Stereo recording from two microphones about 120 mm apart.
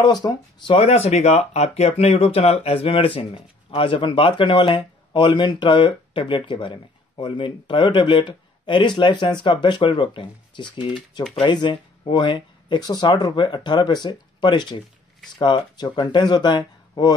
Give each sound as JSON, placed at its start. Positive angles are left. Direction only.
{"t": 0.0, "sound": "speech", "side_deg": 35}
{"t": 0.7, "sound": "speech", "side_deg": 60}